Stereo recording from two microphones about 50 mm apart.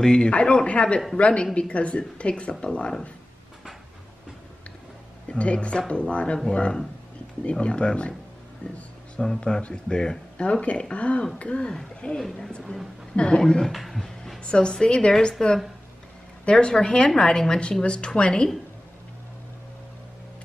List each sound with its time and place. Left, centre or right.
0.0 s speech: centre
5.3 s speech: left
9.2 s speech: centre
13.7 s a sound: centre
14.4 s speech: left
16.4 s speech: centre